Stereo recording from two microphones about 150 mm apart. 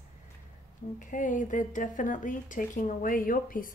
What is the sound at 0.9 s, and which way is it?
Speech, 60° left (ahead or behind).